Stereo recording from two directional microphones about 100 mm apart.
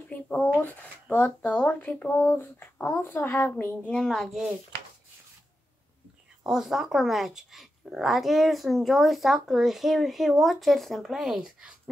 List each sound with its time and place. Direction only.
0.1 s a sound: 15° left (ahead or behind)
0.6 s speech: 15° left (ahead or behind)
3.9 s speech: 5° left (ahead or behind)
6.4 s speech: 5° right (ahead or behind)